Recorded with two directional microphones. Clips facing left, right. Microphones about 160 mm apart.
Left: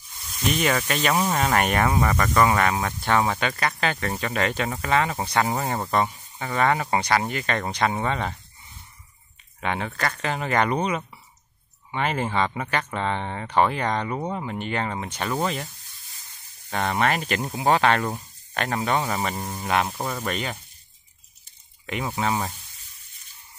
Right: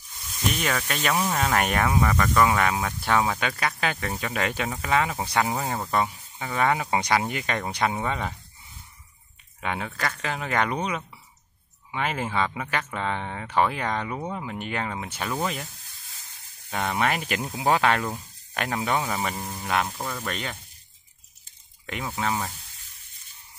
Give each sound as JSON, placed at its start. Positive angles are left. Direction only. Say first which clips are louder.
{"t": 0.6, "sound": "speech", "louder": "left 7 dB", "side_deg": 10}
{"t": 9.6, "sound": "speech", "louder": "left 3 dB", "side_deg": -5}
{"t": 14.1, "sound": "speech", "louder": "left 3 dB", "side_deg": 15}
{"t": 14.4, "sound": "speech", "louder": "left 3 dB", "side_deg": 0}
{"t": 16.7, "sound": "speech", "louder": "left 2 dB", "side_deg": -5}
{"t": 19.4, "sound": "speech", "louder": "left 3 dB", "side_deg": 20}
{"t": 20.2, "sound": "speech", "louder": "left 4 dB", "side_deg": 5}
{"t": 21.8, "sound": "speech", "louder": "left 4 dB", "side_deg": 0}